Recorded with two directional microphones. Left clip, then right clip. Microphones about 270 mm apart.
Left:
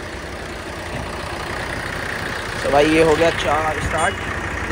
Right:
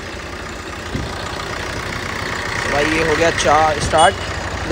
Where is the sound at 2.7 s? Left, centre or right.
Centre.